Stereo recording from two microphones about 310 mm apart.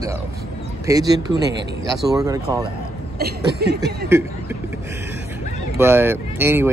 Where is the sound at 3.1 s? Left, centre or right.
Right.